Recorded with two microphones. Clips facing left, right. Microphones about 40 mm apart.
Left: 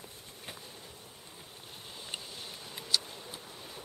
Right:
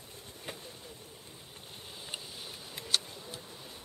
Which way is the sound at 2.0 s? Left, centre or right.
Centre.